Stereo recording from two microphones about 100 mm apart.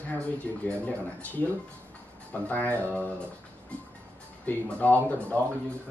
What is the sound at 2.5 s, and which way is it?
Speech, 15° left (ahead or behind).